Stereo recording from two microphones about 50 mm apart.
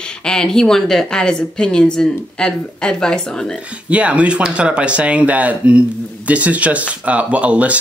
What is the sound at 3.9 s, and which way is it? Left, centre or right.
Speech, right.